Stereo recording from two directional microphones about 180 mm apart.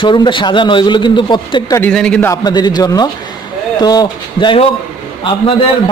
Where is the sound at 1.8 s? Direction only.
5° left (ahead or behind).